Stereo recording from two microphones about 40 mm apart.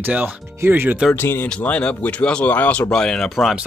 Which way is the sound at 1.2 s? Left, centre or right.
Left.